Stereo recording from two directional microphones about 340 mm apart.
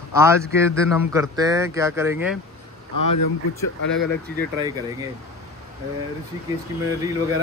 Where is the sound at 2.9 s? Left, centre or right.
Left.